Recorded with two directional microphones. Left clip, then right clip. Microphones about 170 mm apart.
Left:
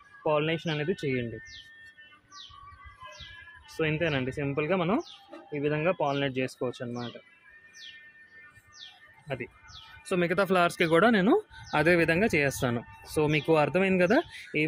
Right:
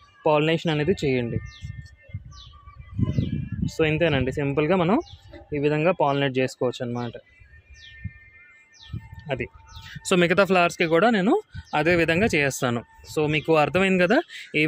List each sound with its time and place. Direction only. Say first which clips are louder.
0.2 s speech: right 7 dB; 60° right (ahead or behind)
3.7 s speech: right 7 dB; 60° right (ahead or behind)
9.3 s speech: right 7 dB; 70° right (ahead or behind)
10.0 s speech: right 7 dB; 55° right (ahead or behind); by 14.7 s 30° right (ahead or behind)